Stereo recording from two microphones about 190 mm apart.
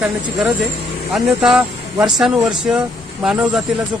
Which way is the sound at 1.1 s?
Centre (ahead or behind).